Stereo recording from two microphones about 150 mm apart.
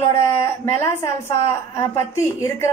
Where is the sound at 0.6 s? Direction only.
20° left (ahead or behind).